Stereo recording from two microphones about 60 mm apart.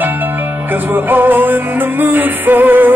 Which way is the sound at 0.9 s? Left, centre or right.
Right.